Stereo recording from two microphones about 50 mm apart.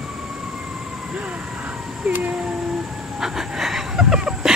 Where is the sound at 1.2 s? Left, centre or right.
Right.